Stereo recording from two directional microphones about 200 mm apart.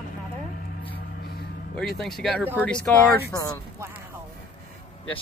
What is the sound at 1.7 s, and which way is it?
Speech, centre (ahead or behind).